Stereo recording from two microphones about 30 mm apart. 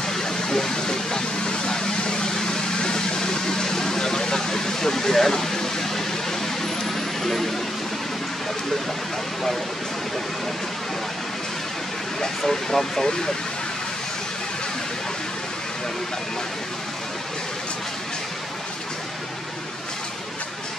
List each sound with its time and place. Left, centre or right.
0.1 s vehicle: centre
12.4 s speech: centre
13.0 s speech: left